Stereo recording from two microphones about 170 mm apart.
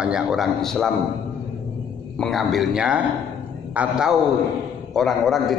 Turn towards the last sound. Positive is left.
turn(degrees=0)  # may be behind; listen again after turning